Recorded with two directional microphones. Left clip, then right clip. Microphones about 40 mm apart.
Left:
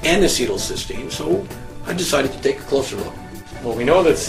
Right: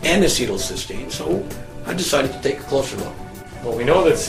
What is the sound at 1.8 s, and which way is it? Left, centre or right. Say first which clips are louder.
Speech: even; left.